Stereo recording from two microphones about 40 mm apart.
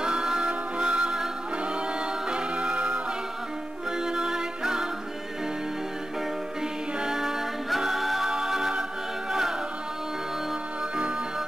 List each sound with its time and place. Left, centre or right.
0.0 s music: centre
2.2 s music: right
4.0 s music: centre
7.0 s music: centre